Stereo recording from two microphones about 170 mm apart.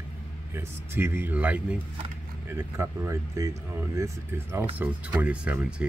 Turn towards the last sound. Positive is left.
turn(degrees=-5)  # may be behind; listen again after turning